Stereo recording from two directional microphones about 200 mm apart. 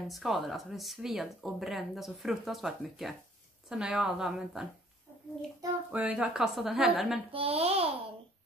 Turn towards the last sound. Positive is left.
turn(degrees=-30)  # may be behind; listen again after turning